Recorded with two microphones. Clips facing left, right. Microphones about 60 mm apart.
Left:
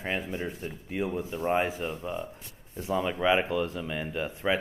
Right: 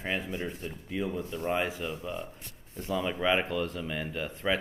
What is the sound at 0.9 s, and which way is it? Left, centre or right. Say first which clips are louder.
Speech: left 2 dB; left.